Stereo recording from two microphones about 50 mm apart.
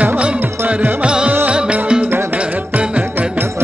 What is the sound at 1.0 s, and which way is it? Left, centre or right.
Music, centre.